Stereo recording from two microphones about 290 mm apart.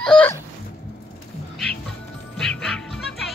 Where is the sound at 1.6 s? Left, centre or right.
Centre.